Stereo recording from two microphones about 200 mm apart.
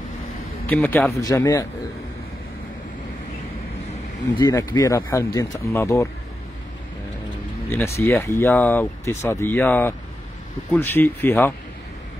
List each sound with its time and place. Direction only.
0.7 s speech: 10° left (ahead or behind)
4.4 s speech: 15° left (ahead or behind)
7.7 s speech: 10° left (ahead or behind)